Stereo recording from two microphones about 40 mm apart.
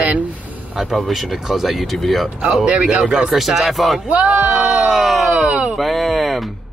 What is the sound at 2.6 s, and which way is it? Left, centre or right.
Speech, right.